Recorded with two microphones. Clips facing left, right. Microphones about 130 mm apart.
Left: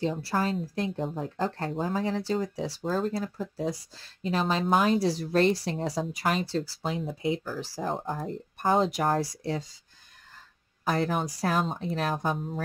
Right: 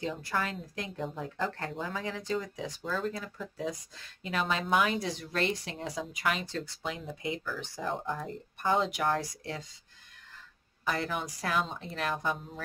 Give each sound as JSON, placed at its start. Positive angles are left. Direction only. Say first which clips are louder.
{"t": 0.0, "sound": "speech", "louder": "left 5 dB", "side_deg": 35}
{"t": 10.9, "sound": "speech", "louder": "left 6 dB", "side_deg": 45}